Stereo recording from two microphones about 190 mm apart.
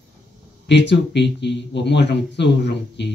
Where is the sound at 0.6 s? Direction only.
70° left (ahead or behind).